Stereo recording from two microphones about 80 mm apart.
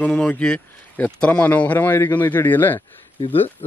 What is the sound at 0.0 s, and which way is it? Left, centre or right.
Speech, centre.